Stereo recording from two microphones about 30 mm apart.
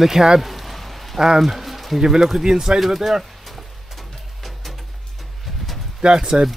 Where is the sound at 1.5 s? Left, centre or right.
Centre.